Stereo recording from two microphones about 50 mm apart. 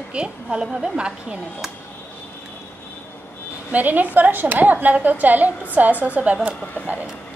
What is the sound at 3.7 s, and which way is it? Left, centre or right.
A woman's voice, right.